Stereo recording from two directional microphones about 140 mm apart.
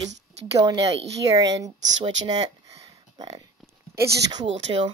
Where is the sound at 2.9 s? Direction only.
30° right (ahead or behind).